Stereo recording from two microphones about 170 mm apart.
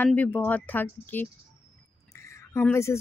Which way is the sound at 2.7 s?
15° left (ahead or behind).